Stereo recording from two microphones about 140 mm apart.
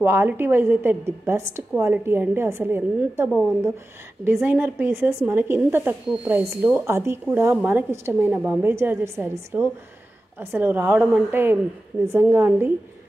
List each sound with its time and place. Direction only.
0.0 s a woman's voice: 15° right (ahead or behind)
4.4 s a woman's voice: 15° right (ahead or behind)